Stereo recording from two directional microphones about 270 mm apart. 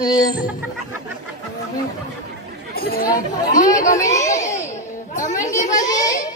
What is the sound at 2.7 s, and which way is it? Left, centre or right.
Speech, left.